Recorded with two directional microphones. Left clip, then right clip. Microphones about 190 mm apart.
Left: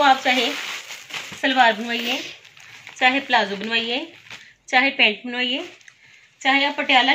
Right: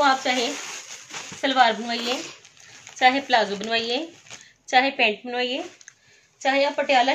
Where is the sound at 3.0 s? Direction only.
25° right (ahead or behind).